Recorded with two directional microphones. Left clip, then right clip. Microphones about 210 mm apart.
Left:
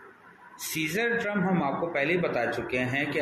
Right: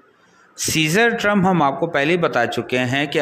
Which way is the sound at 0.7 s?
55° right (ahead or behind).